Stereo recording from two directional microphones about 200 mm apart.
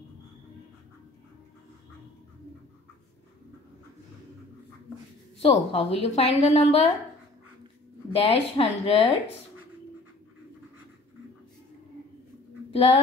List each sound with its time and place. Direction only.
5.4 s a woman's voice: 30° left (ahead or behind)
8.1 s a woman's voice: 30° left (ahead or behind)
12.7 s speech: 30° left (ahead or behind)